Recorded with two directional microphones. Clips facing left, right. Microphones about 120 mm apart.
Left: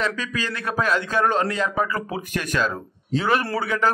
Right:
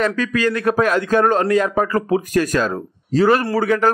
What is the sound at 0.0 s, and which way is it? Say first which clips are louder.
A man's voice: right 8 dB; 50° right (ahead or behind).